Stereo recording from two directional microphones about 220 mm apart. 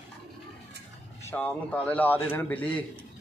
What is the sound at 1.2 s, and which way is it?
A man's voice, 10° left (ahead or behind).